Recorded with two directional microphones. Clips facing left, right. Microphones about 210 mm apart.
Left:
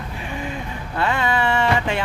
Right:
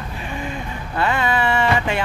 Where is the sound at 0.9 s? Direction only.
5° right (ahead or behind).